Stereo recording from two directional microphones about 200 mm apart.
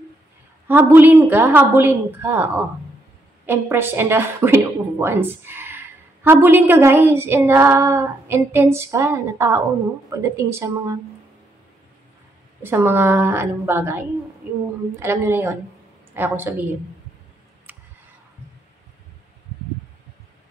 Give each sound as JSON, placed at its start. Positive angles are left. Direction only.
{"t": 0.7, "sound": "female singing", "side_deg": -10}
{"t": 12.6, "sound": "female singing", "side_deg": -10}
{"t": 17.7, "sound": "a sound", "side_deg": -10}